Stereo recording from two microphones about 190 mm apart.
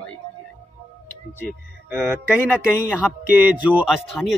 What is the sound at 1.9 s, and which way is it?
Speech, 15° right (ahead or behind).